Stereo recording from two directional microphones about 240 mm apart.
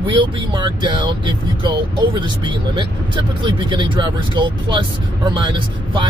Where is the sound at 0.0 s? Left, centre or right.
Centre.